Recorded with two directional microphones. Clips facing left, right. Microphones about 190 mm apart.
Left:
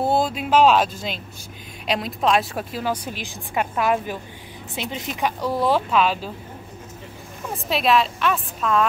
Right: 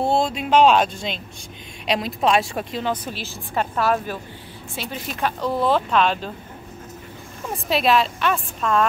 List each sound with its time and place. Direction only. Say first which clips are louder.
0.0 s speech: even; 5° left (ahead or behind)
7.5 s a woman's voice: right 1 dB; centre (ahead or behind)